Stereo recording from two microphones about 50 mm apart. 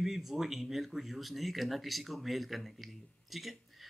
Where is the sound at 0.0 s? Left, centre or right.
Centre.